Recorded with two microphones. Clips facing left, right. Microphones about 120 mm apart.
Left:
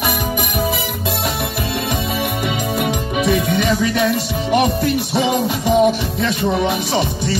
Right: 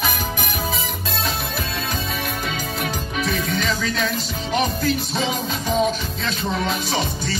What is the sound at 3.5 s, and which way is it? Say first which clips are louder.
Music: left 7 dB; 65° left (ahead or behind).